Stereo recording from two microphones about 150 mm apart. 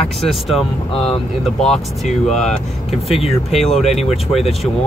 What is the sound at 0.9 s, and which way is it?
Speech, 40° left (ahead or behind).